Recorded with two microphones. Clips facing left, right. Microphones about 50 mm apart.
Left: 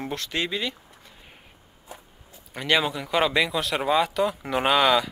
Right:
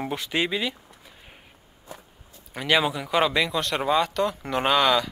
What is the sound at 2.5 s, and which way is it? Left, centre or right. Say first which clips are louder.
Speech: right 1 dB; centre.